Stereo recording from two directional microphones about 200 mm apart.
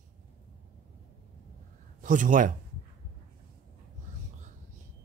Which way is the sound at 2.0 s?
40° right (ahead or behind).